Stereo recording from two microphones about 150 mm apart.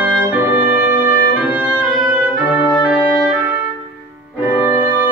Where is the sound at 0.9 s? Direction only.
70° left (ahead or behind).